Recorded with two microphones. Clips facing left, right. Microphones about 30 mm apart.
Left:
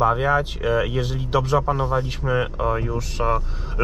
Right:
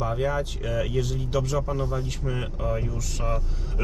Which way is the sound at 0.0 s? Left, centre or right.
Left.